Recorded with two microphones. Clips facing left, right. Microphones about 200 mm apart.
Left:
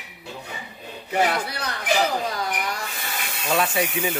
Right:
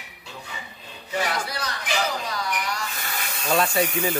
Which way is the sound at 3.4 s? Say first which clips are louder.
Right 1 dB; 5° left (ahead or behind).